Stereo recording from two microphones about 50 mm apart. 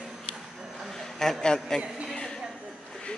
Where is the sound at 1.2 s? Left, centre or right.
Centre.